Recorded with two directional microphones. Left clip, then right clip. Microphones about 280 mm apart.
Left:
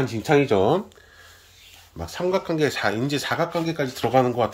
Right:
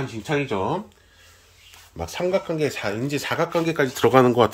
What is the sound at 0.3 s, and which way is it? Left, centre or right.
Speech, left.